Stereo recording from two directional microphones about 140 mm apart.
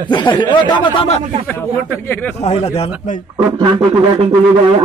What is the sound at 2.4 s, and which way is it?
Speech, 45° left (ahead or behind).